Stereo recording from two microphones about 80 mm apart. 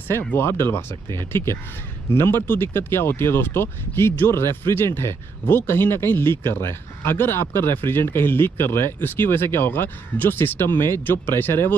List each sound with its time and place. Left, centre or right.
0.3 s speech: left